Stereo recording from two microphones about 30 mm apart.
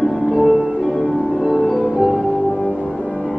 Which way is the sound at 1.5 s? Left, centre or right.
Centre.